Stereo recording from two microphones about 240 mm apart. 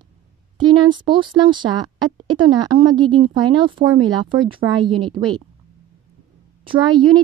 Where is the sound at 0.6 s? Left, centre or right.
Centre.